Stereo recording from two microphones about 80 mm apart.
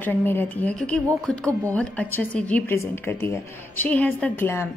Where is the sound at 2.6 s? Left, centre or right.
Left.